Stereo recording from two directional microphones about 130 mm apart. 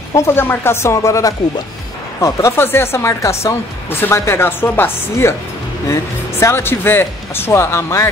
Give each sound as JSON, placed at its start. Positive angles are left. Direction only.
{"t": 0.1, "sound": "speech", "side_deg": 20}
{"t": 6.4, "sound": "speech", "side_deg": 20}